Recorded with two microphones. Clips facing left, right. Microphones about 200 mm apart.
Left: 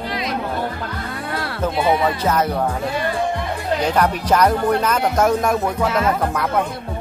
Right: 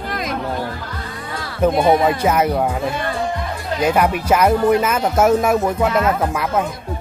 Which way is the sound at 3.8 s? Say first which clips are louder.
Right 4 dB; 10° right (ahead or behind).